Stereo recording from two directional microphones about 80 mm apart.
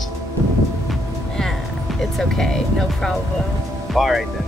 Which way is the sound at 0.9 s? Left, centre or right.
Centre.